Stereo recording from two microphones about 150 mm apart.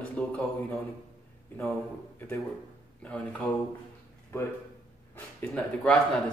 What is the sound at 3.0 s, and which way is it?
Speech, 10° left (ahead or behind).